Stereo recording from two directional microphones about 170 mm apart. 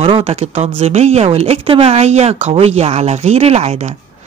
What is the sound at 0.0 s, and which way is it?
Speech, 35° right (ahead or behind).